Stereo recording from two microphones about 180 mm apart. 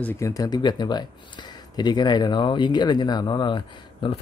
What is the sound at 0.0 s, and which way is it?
Speech, 15° left (ahead or behind).